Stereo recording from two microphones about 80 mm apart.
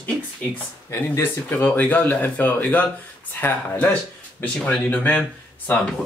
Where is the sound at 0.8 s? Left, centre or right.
Left.